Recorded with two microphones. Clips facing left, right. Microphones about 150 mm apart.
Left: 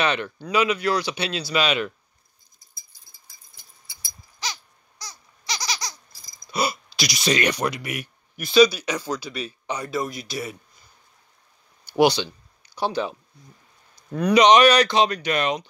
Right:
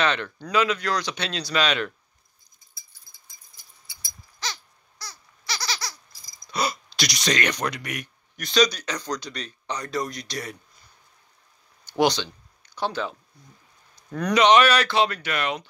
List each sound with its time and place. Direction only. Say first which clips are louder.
0.0 s speech: left 1 dB; 10° left (ahead or behind)
4.4 s a sound: left 1 dB; 15° left (ahead or behind)
6.5 s speech: left 2 dB; 5° left (ahead or behind)
11.9 s speech: left 3 dB; 10° left (ahead or behind)
14.1 s speech: left 2 dB; 15° left (ahead or behind)